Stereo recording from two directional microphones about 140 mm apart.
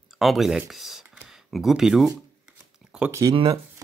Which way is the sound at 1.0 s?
10° right (ahead or behind).